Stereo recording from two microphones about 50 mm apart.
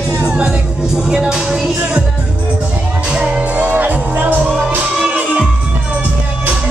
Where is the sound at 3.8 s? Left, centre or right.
Right.